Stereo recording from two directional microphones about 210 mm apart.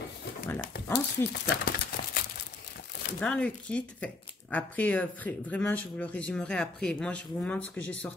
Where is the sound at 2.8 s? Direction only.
50° left (ahead or behind).